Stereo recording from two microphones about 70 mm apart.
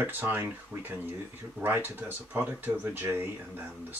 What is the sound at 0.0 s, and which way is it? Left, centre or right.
Speech, right.